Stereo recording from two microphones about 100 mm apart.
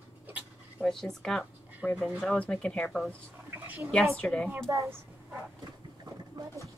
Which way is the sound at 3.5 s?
25° right (ahead or behind).